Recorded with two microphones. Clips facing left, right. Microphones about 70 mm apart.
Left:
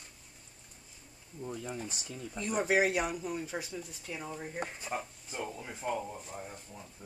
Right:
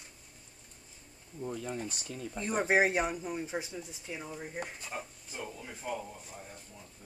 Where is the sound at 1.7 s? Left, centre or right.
Right.